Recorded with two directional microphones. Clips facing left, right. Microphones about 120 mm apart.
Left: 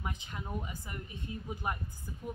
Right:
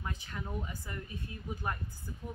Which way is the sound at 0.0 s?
20° left (ahead or behind).